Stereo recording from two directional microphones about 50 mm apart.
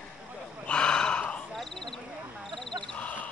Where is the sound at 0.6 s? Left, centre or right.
Centre.